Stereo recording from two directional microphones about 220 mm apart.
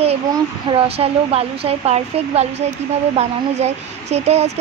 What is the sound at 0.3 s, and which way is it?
Speech, 25° right (ahead or behind).